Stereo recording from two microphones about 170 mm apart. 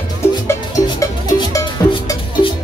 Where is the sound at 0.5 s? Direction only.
20° left (ahead or behind).